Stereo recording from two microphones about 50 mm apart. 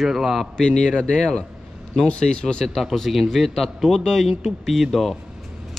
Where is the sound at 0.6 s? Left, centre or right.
Centre.